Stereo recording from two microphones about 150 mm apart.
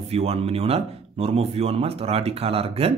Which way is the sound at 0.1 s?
45° right (ahead or behind).